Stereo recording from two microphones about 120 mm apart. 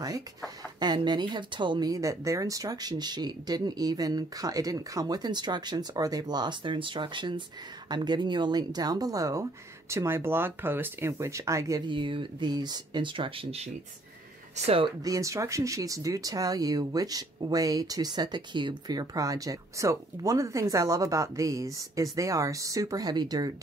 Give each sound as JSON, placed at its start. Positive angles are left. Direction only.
{"t": 0.7, "sound": "speech", "side_deg": -35}
{"t": 11.9, "sound": "speech", "side_deg": -45}
{"t": 15.0, "sound": "speech", "side_deg": -30}